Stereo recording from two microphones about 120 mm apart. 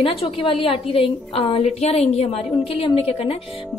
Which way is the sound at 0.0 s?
50° left (ahead or behind).